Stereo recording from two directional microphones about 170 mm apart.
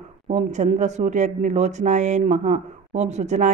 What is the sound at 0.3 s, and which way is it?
Speech, 45° right (ahead or behind).